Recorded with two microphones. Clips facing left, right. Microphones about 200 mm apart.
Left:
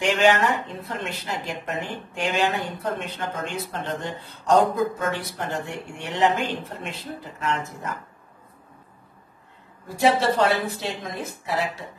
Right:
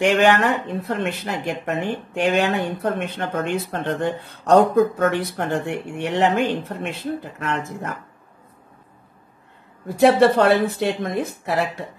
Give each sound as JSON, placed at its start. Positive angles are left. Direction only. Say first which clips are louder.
{"t": 0.0, "sound": "speech", "louder": "right 3 dB", "side_deg": -60}
{"t": 9.9, "sound": "speech", "louder": "right 6 dB", "side_deg": -60}